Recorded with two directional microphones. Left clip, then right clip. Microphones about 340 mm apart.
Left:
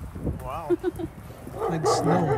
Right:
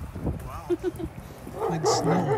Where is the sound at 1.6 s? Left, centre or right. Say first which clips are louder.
Left 1 dB; centre.